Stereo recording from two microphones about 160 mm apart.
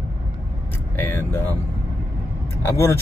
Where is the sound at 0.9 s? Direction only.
10° left (ahead or behind).